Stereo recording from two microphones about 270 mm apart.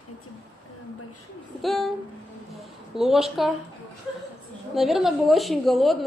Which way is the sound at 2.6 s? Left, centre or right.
Centre.